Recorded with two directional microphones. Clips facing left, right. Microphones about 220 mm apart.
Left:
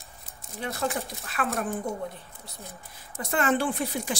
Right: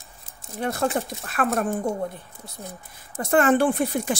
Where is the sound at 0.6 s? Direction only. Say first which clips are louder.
Right 6 dB; 50° right (ahead or behind).